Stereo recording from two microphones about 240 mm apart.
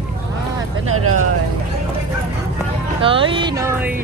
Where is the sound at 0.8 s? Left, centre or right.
Right.